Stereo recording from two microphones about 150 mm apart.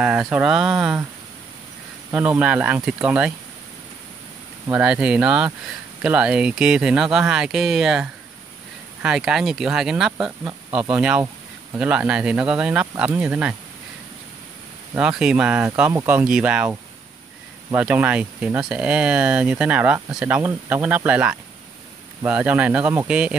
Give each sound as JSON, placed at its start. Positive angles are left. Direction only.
{"t": 0.0, "sound": "speech", "side_deg": -10}
{"t": 2.0, "sound": "speech", "side_deg": -15}
{"t": 4.6, "sound": "speech", "side_deg": -10}
{"t": 15.0, "sound": "speech", "side_deg": -5}
{"t": 17.7, "sound": "speech", "side_deg": -10}